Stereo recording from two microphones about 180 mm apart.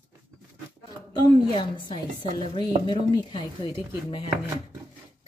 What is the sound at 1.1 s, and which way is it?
A woman's voice, 25° left (ahead or behind).